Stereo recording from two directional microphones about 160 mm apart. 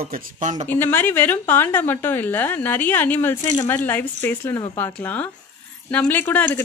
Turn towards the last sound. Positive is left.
turn(degrees=10)  # may be behind; listen again after turning